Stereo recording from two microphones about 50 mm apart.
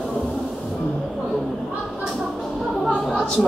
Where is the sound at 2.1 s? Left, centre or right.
Centre.